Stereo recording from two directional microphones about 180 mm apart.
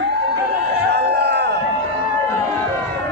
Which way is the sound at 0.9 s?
65° right (ahead or behind).